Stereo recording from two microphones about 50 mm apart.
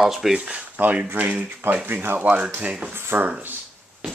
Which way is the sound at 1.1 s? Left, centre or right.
Right.